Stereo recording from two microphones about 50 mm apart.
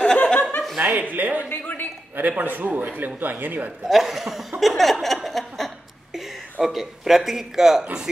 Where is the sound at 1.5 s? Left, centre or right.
Left.